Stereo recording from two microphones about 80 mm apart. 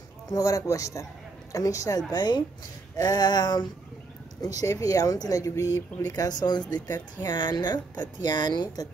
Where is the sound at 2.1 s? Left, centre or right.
Left.